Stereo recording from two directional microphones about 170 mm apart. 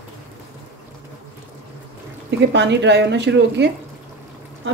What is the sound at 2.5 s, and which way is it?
A woman's voice, 90° right.